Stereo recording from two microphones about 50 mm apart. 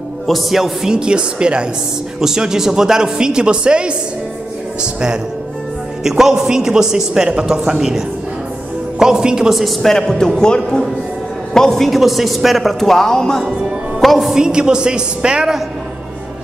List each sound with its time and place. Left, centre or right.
0.3 s a man's voice: centre
0.8 s a woman's voice: centre
6.0 s a man's voice: centre
9.0 s a man's voice: centre
9.5 s a man's voice: centre
13.9 s music: centre
14.4 s a man's voice: centre